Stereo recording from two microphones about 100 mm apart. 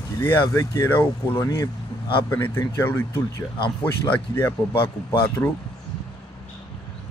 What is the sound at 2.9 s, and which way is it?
Speech, 25° left (ahead or behind).